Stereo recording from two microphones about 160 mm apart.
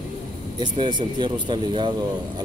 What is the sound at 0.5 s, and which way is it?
Speech, 30° right (ahead or behind).